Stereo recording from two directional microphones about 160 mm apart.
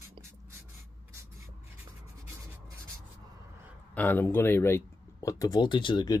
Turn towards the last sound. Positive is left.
turn(degrees=30)  # may be behind; listen again after turning